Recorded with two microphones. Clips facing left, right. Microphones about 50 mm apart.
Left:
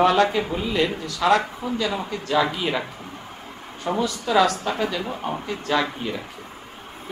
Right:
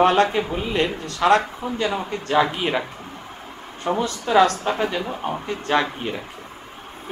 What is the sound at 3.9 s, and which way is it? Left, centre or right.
Speech, right.